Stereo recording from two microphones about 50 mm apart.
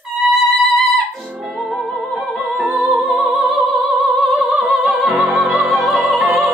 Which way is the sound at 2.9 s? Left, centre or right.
Centre.